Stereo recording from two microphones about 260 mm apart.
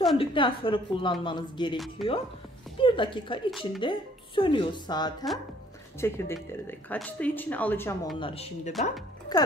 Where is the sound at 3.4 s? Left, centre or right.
Centre.